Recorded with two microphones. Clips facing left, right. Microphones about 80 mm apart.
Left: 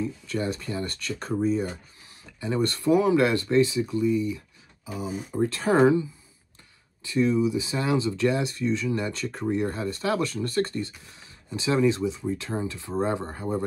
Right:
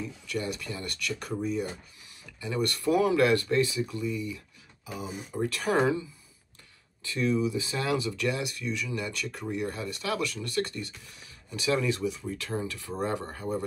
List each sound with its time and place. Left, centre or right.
0.3 s speech: left